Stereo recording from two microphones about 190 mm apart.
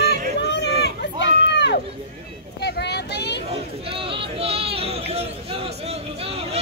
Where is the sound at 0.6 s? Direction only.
65° left (ahead or behind).